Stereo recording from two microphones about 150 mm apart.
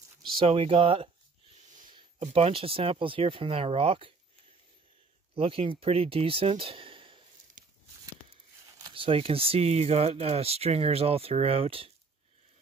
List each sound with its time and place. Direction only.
0.3 s speech: 40° right (ahead or behind)
2.2 s speech: 40° right (ahead or behind)
5.3 s speech: 40° right (ahead or behind)
7.6 s a sound: 60° right (ahead or behind)
8.7 s speech: 30° right (ahead or behind)